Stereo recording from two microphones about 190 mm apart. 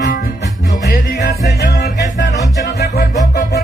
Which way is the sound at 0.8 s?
60° left (ahead or behind).